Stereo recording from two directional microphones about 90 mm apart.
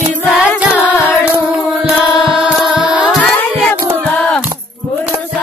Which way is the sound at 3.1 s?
Centre (ahead or behind).